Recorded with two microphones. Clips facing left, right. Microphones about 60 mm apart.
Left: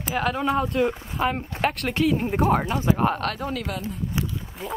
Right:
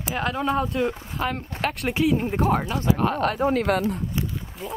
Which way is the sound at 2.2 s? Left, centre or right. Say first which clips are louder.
Left 1 dB; centre.